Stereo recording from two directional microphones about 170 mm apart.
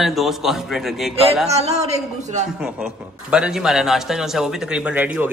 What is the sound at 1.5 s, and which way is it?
Speech, 40° right (ahead or behind).